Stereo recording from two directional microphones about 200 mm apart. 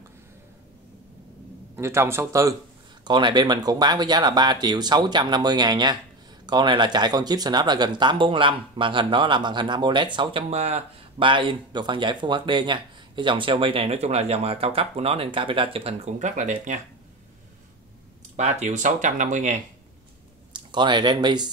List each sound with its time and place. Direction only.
1.8 s a man's voice: 15° right (ahead or behind); by 16.8 s 35° right (ahead or behind)
18.3 s speech: 35° right (ahead or behind)
20.5 s speech: 25° right (ahead or behind)